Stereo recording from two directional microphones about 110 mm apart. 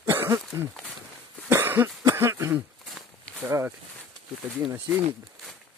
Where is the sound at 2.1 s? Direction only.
25° right (ahead or behind).